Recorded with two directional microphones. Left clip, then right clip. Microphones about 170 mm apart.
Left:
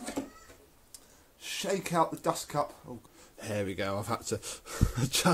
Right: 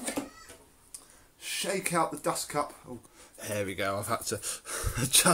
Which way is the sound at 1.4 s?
40° left (ahead or behind).